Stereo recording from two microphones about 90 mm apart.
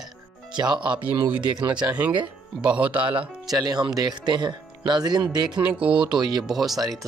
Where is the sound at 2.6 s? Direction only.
15° right (ahead or behind).